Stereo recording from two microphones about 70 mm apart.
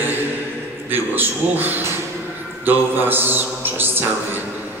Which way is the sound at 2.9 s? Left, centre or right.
Right.